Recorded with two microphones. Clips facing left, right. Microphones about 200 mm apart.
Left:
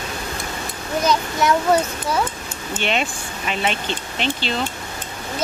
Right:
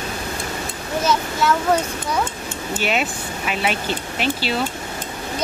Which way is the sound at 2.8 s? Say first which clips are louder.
Even; 5° right (ahead or behind).